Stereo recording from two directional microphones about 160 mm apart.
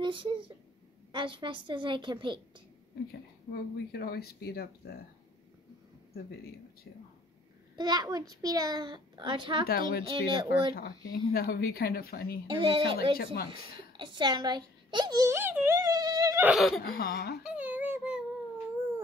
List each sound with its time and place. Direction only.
0.0 s a child's voice: 30° right (ahead or behind)
3.9 s speech: 75° left (ahead or behind)
6.1 s speech: 75° left (ahead or behind)
7.7 s a child's voice: 25° right (ahead or behind)
9.7 s speech: 70° left (ahead or behind)
10.0 s a child's voice: 30° right (ahead or behind)
11.1 s speech: 70° left (ahead or behind)
12.4 s speech: 30° right (ahead or behind)
13.2 s speech: 90° left
13.5 s a child's voice: 30° right (ahead or behind)
16.4 s speech: centre (ahead or behind)
16.8 s speech: 70° left (ahead or behind)
17.4 s a sound: 5° right (ahead or behind)